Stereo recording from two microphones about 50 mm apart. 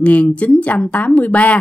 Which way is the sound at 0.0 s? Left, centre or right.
Left.